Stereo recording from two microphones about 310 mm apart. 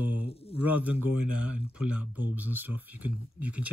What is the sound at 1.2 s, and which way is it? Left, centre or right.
Speech, left.